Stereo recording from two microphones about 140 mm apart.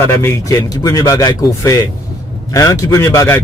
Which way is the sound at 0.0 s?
20° left (ahead or behind).